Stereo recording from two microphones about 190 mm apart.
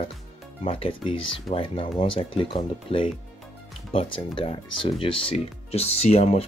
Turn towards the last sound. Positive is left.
turn(degrees=35)  # may be behind; listen again after turning